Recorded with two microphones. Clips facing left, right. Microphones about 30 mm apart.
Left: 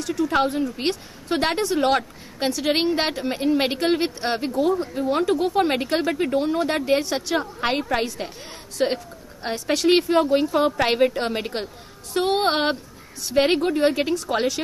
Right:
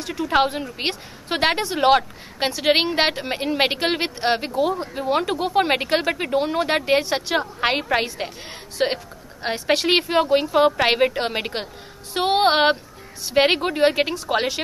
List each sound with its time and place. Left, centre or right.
0.0 s a woman's voice: right